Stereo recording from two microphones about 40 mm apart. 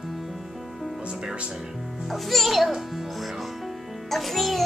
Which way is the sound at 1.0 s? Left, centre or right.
Right.